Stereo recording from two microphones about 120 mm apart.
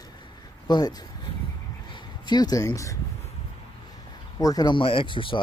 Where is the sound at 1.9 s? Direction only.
40° left (ahead or behind).